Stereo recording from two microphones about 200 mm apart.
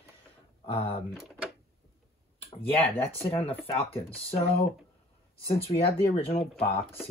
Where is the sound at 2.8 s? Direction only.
30° left (ahead or behind).